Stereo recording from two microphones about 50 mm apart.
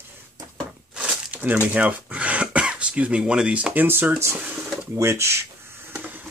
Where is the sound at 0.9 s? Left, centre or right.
Centre.